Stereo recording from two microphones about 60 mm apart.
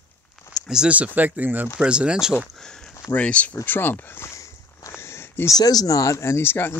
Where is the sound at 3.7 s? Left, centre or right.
Left.